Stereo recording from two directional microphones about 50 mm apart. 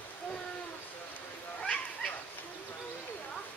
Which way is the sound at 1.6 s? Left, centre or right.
Left.